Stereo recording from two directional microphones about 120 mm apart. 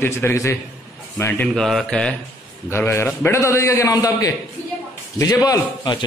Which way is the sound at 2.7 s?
20° left (ahead or behind).